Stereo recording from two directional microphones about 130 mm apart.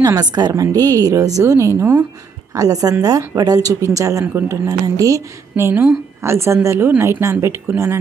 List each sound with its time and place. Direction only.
0.0 s a woman's voice: 30° right (ahead or behind)